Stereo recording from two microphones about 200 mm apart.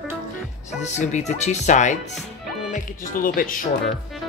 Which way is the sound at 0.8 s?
35° left (ahead or behind).